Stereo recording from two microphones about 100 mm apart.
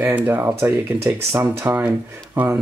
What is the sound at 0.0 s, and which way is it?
Speech, 15° right (ahead or behind).